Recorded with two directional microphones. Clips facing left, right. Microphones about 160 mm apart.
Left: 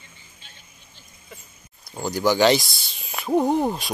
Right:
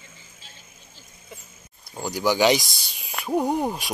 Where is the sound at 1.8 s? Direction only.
10° right (ahead or behind).